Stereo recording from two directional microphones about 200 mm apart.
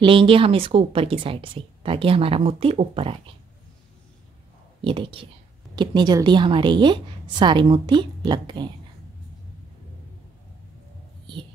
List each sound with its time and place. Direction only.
0.0 s a woman's voice: 25° right (ahead or behind)
4.8 s a woman's voice: 25° right (ahead or behind)